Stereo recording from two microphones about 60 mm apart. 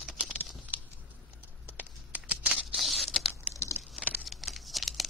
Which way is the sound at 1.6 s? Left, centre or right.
Right.